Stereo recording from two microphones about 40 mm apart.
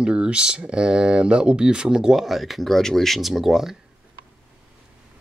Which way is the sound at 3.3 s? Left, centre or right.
Centre.